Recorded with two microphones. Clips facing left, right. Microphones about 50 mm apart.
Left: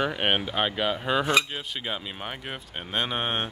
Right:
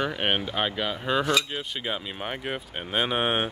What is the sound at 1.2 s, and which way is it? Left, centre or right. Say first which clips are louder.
Cutlery: left 2 dB; left.